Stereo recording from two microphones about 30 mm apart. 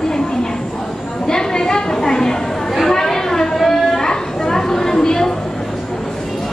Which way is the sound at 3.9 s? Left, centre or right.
Centre.